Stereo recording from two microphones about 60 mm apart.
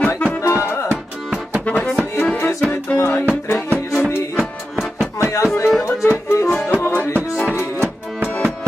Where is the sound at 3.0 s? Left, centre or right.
Left.